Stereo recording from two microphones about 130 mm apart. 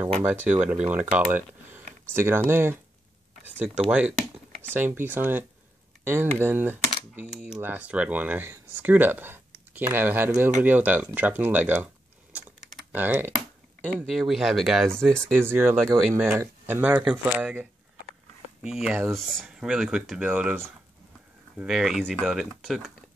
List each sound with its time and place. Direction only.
0.2 s speech: 10° right (ahead or behind)
3.9 s a sound: 10° right (ahead or behind)
4.7 s speech: 15° right (ahead or behind)
11.1 s typing: 15° right (ahead or behind)
14.0 s speech: centre (ahead or behind)
15.3 s speech: 20° right (ahead or behind)